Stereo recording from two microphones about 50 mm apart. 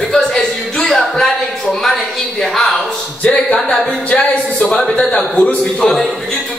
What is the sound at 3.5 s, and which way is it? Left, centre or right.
A man's voice, centre.